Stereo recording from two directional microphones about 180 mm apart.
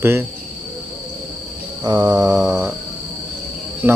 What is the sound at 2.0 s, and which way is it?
Mantra, 10° right (ahead or behind).